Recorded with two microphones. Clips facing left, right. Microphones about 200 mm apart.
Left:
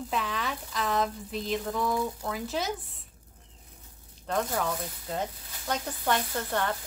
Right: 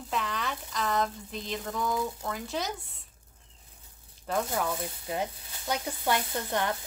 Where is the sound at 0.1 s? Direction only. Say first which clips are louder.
Right 1 dB; centre (ahead or behind).